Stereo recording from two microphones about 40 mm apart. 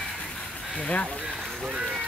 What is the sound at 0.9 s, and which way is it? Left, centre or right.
Speech, left.